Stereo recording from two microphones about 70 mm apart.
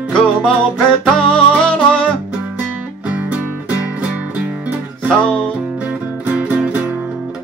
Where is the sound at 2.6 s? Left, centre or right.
Centre.